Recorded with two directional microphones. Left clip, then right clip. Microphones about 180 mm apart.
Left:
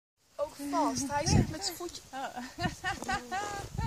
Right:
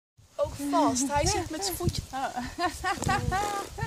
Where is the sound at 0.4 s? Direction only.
Centre (ahead or behind).